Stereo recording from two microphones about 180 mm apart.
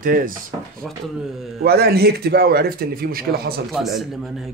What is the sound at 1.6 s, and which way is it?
Speech, 60° right (ahead or behind).